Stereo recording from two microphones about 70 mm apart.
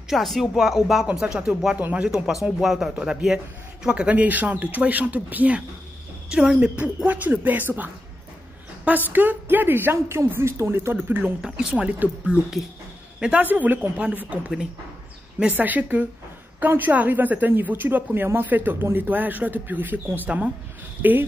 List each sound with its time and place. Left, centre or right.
0.1 s speech: centre
1.8 s speech: right
2.0 s speech: centre; by 11.3 s right
11.4 s speech: centre
13.2 s speech: right
15.5 s speech: right